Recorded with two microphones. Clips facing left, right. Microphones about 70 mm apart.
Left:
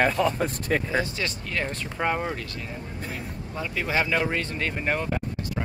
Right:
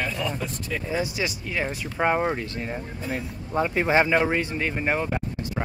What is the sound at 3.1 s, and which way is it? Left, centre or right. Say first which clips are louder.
Speech: right 11 dB; right.